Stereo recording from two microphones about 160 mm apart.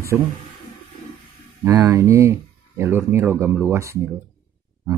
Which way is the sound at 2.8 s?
15° right (ahead or behind).